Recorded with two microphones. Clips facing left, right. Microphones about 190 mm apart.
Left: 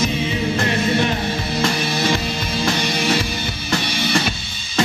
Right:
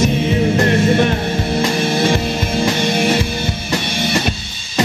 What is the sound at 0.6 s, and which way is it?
Music, 55° right (ahead or behind).